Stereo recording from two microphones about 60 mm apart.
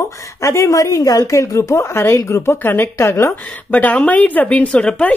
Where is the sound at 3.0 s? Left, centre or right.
Left.